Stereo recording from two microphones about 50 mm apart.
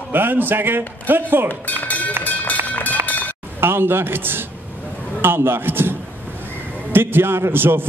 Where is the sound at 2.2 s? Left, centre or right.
Left.